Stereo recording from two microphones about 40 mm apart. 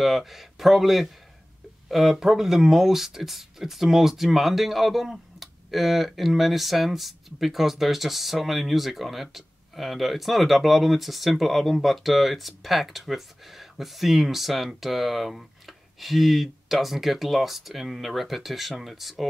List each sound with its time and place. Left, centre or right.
0.0 s speech: centre